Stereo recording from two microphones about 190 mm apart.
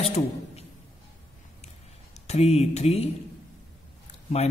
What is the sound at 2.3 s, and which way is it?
Speech, 35° left (ahead or behind).